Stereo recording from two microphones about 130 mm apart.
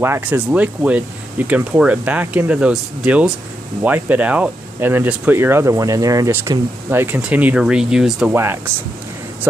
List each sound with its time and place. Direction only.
0.0 s speech: 15° right (ahead or behind)